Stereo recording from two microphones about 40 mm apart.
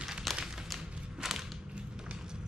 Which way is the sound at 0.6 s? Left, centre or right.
Centre.